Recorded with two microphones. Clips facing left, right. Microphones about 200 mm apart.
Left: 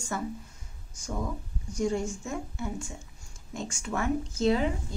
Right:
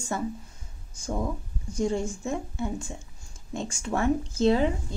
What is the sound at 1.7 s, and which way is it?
A woman's voice, 30° right (ahead or behind).